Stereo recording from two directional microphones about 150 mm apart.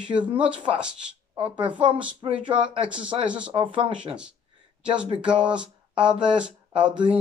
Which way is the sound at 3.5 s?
35° right (ahead or behind).